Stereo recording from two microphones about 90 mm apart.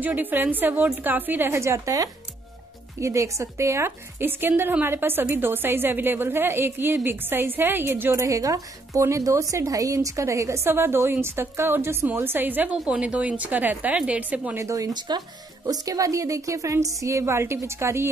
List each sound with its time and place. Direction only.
0.0 s a woman's voice: 20° right (ahead or behind)
12.7 s a woman's voice: 5° right (ahead or behind)
14.6 s speech: 40° right (ahead or behind)